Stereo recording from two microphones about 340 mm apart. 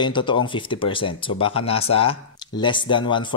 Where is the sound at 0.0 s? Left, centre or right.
Centre.